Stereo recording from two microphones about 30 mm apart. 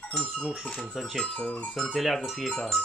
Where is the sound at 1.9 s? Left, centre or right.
Centre.